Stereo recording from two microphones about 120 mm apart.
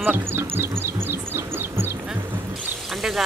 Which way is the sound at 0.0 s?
15° right (ahead or behind).